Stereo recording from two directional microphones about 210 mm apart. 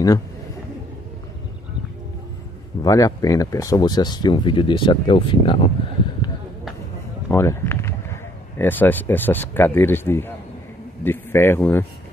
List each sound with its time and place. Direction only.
2.8 s speech: 15° left (ahead or behind)
7.2 s speech: 10° left (ahead or behind)